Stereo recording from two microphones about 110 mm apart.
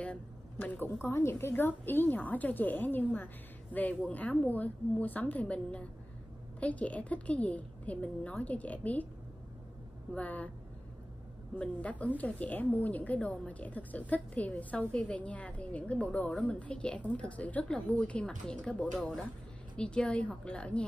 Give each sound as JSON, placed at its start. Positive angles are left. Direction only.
{"t": 0.0, "sound": "a sound", "side_deg": 10}
{"t": 1.0, "sound": "a woman's voice", "side_deg": 20}
{"t": 10.1, "sound": "a woman's voice", "side_deg": 15}
{"t": 11.5, "sound": "a woman's voice", "side_deg": 10}